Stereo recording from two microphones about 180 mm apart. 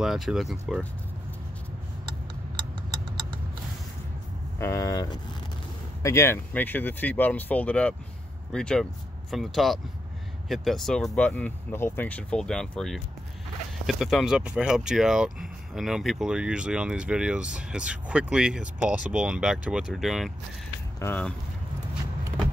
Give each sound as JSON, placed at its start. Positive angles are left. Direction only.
{"t": 0.0, "sound": "speech", "side_deg": -5}
{"t": 4.6, "sound": "speech", "side_deg": 15}
{"t": 21.0, "sound": "speech", "side_deg": 10}